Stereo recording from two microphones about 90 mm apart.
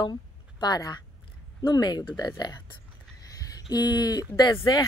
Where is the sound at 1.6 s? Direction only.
50° left (ahead or behind).